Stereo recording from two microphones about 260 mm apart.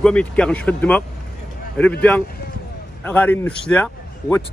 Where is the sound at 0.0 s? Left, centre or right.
Centre.